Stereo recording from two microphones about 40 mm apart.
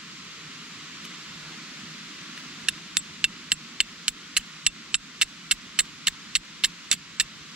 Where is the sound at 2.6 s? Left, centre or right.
Right.